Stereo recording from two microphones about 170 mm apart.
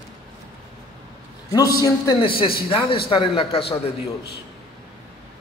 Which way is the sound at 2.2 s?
30° left (ahead or behind).